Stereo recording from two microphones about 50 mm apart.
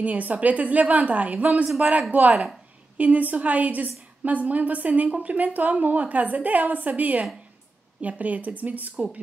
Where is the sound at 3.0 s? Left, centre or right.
Right.